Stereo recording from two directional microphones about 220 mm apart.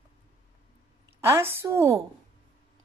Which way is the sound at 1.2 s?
10° right (ahead or behind).